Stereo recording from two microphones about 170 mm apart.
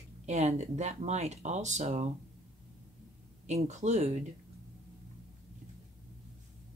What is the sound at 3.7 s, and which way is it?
Speech, 45° right (ahead or behind).